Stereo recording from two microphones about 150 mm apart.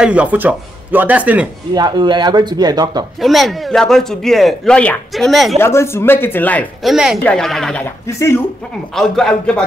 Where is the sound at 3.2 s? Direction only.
Centre (ahead or behind).